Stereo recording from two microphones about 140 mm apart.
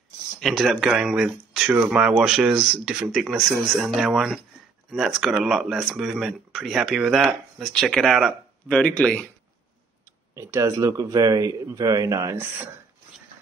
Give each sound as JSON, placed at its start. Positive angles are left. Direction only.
{"t": 0.4, "sound": "speech", "side_deg": 0}
{"t": 10.3, "sound": "speech", "side_deg": -20}